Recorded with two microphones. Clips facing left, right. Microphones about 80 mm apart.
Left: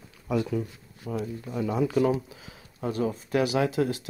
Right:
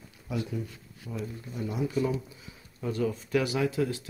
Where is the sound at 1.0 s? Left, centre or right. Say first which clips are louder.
Left 5 dB; left.